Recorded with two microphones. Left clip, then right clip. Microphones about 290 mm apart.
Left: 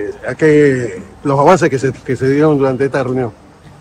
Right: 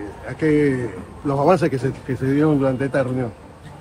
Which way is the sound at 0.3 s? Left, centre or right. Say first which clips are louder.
Left 9 dB; left.